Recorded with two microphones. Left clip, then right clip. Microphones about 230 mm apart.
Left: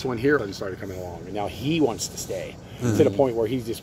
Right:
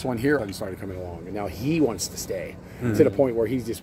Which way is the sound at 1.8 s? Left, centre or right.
Centre.